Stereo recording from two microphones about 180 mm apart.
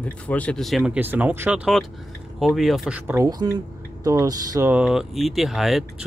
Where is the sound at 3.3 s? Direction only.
20° right (ahead or behind).